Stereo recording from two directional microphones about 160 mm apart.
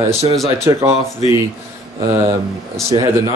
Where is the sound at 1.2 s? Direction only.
35° left (ahead or behind).